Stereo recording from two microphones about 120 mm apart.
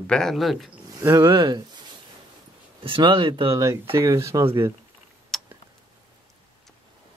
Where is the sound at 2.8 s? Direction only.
45° right (ahead or behind).